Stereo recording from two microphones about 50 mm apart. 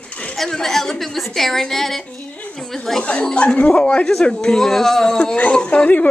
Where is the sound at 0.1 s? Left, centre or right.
Left.